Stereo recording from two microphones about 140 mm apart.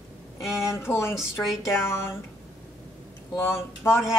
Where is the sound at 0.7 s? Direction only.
15° left (ahead or behind).